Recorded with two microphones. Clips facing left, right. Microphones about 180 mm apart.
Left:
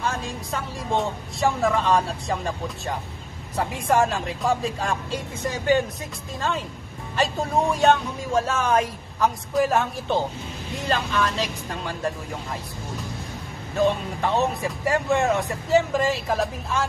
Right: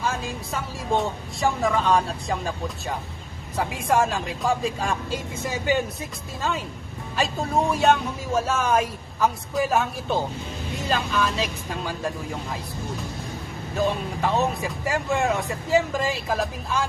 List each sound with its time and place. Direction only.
0.0 s speech: centre (ahead or behind)
7.2 s speech: centre (ahead or behind)
13.7 s speech: centre (ahead or behind)